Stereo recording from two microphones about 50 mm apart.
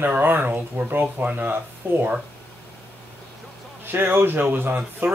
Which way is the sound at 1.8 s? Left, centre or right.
Right.